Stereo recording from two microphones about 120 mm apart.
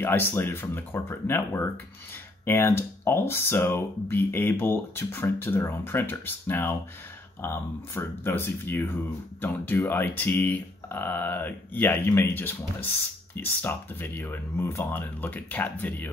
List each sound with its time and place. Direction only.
0.0 s speech: 20° left (ahead or behind)